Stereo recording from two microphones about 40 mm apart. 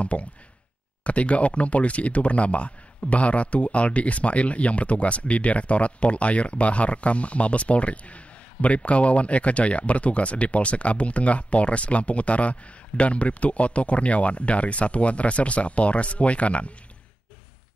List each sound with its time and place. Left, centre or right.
0.0 s speech: left